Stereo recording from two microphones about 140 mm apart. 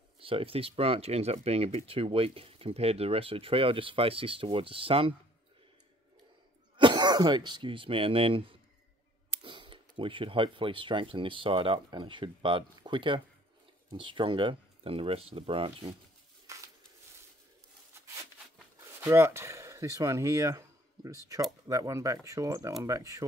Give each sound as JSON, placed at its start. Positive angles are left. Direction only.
{"t": 0.2, "sound": "speech", "side_deg": -40}
{"t": 6.8, "sound": "speech", "side_deg": -35}
{"t": 16.5, "sound": "a sound", "side_deg": -20}
{"t": 18.9, "sound": "speech", "side_deg": -20}